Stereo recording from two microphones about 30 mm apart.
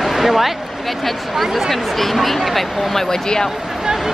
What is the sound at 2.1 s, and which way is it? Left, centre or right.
Speech, centre.